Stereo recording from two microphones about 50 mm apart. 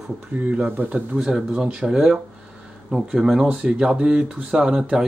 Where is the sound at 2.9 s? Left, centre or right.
Centre.